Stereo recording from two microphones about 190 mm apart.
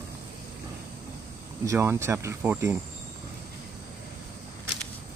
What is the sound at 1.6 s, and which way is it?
Speech, 15° right (ahead or behind).